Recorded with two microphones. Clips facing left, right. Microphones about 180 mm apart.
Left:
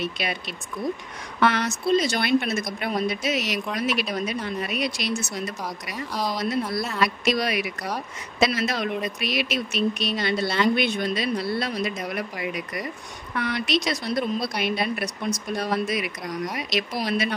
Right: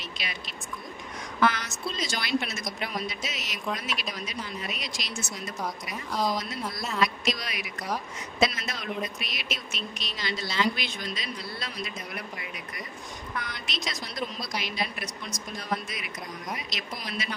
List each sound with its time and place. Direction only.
0.0 s speech: 60° left (ahead or behind)
1.4 s speech: 65° left (ahead or behind)
7.0 s speech: 65° left (ahead or behind)
8.4 s speech: 80° left
13.4 s speech: 65° left (ahead or behind)